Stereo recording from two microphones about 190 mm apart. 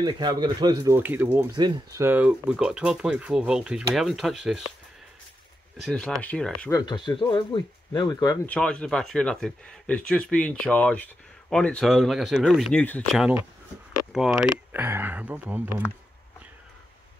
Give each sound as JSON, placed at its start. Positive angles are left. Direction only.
{"t": 0.0, "sound": "speech", "side_deg": -20}
{"t": 5.8, "sound": "speech", "side_deg": 0}
{"t": 6.7, "sound": "speech", "side_deg": 25}
{"t": 8.5, "sound": "speech", "side_deg": 5}
{"t": 13.2, "sound": "speech", "side_deg": -10}